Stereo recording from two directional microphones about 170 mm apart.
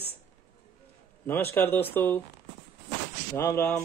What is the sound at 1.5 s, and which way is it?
Speech, 10° left (ahead or behind).